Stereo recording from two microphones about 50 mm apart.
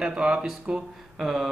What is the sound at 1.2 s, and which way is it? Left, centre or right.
Speech, centre.